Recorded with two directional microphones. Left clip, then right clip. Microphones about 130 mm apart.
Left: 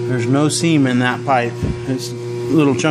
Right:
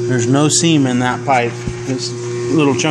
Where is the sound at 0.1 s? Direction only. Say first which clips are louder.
Right 3 dB; 15° right (ahead or behind).